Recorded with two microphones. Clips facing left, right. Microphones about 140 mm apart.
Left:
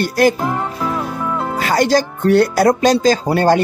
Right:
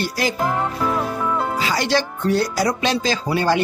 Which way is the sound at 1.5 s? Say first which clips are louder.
Left 10 dB; 50° left (ahead or behind).